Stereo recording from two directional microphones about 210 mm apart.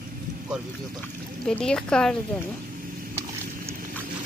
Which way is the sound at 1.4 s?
5° left (ahead or behind).